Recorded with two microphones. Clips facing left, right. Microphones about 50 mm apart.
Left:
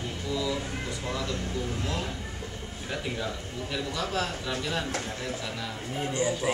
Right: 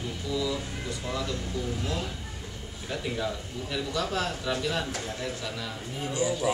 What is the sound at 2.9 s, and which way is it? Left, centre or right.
Speech, centre.